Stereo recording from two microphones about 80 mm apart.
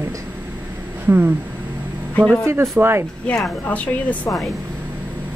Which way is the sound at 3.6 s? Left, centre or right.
Centre.